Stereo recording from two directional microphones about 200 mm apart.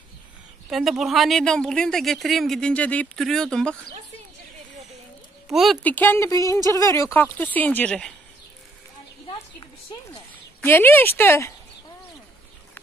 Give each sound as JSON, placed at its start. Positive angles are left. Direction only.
{"t": 0.7, "sound": "speech", "side_deg": 0}
{"t": 5.5, "sound": "speech", "side_deg": 0}
{"t": 10.6, "sound": "speech", "side_deg": 10}